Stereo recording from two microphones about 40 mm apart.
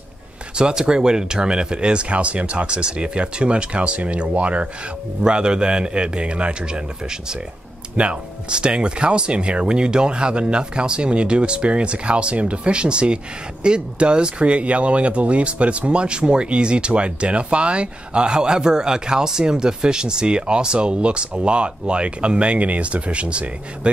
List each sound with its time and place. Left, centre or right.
0.6 s speech: right